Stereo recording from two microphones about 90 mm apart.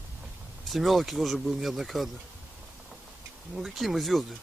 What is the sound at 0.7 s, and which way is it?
Speech, centre (ahead or behind).